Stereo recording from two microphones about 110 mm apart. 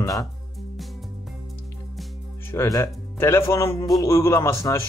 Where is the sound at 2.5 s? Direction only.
30° left (ahead or behind).